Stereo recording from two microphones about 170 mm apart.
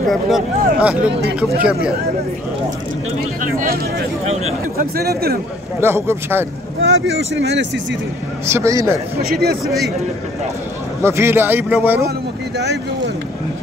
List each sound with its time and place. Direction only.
0.1 s speech: 5° right (ahead or behind)
3.5 s speech: 55° right (ahead or behind)
5.8 s speech: 15° right (ahead or behind)
6.8 s speech: 90° right
8.5 s speech: 15° right (ahead or behind)
9.3 s speech: 65° right (ahead or behind)
11.0 s speech: 15° right (ahead or behind)